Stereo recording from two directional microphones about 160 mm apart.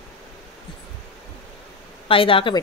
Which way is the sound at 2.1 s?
35° left (ahead or behind).